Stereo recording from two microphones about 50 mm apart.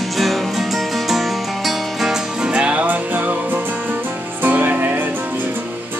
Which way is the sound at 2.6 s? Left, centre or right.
Right.